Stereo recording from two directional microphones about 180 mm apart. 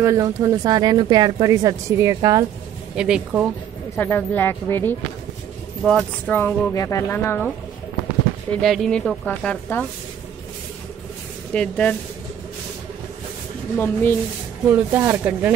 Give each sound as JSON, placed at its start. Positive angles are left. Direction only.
{"t": 0.0, "sound": "speech", "side_deg": -20}
{"t": 3.0, "sound": "speech", "side_deg": -5}
{"t": 3.9, "sound": "speech", "side_deg": 10}
{"t": 8.5, "sound": "speech", "side_deg": 0}
{"t": 11.5, "sound": "speech", "side_deg": 5}
{"t": 13.7, "sound": "speech", "side_deg": 15}
{"t": 14.7, "sound": "speech", "side_deg": -10}